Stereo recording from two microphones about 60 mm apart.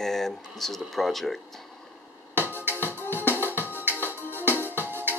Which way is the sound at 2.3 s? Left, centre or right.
Right.